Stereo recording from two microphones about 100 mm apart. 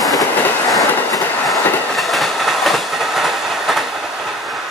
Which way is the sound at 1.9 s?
Centre (ahead or behind).